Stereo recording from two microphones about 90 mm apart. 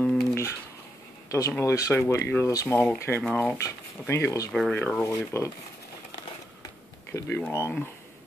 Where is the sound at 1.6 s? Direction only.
35° left (ahead or behind).